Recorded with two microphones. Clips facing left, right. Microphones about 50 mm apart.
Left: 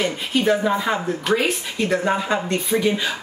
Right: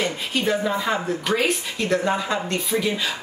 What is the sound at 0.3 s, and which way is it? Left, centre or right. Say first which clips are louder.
Speech: left 5 dB; centre.